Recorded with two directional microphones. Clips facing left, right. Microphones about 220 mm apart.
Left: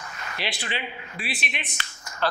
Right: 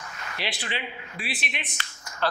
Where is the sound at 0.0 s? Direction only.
20° left (ahead or behind).